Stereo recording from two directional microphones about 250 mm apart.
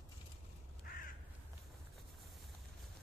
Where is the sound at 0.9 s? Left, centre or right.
Left.